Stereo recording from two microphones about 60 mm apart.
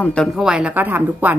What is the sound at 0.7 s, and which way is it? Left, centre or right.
Speech, right.